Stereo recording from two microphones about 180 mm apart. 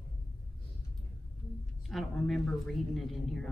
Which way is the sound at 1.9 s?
Centre (ahead or behind).